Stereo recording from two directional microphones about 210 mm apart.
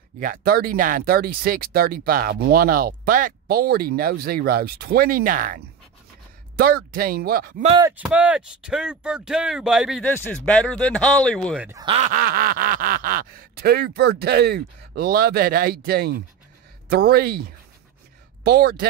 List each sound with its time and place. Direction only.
0.2 s speech: 45° right (ahead or behind)
7.6 s speech: 20° right (ahead or behind)
7.9 s speech: 5° right (ahead or behind)
10.0 s speech: 10° left (ahead or behind)
11.8 s speech: 25° right (ahead or behind)
12.1 s speech: 45° right (ahead or behind)